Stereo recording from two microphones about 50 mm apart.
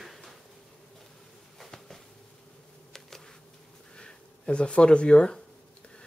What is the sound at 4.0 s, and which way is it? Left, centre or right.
Speech, left.